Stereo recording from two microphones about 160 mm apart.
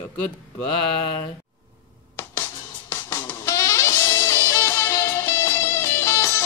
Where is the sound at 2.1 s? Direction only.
15° left (ahead or behind).